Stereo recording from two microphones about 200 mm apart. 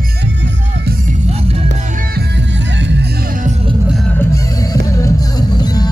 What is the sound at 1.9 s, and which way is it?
Music, 55° right (ahead or behind).